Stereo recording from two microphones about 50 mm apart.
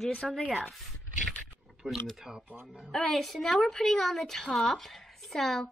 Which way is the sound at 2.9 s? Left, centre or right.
Centre.